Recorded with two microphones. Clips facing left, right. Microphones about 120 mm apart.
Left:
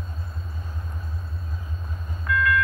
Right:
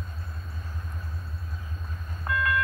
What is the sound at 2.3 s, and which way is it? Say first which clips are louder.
Vehicle: left 4 dB; 30° right (ahead or behind).